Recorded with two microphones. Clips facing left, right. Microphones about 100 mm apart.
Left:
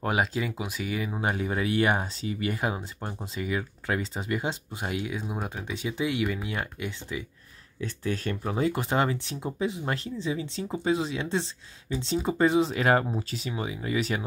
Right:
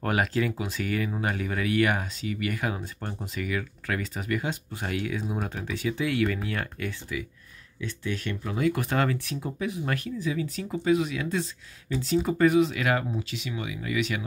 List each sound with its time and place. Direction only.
0.0 s speech: 15° left (ahead or behind)
7.8 s speech: 35° left (ahead or behind)